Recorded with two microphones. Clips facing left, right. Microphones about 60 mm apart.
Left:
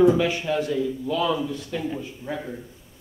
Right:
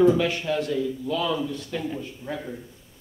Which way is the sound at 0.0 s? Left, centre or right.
Centre.